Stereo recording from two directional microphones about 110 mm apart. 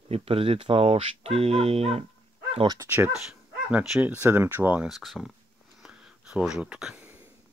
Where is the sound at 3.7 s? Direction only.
10° right (ahead or behind).